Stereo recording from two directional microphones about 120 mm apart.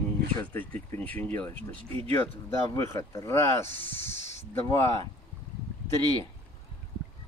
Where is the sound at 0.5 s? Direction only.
15° left (ahead or behind).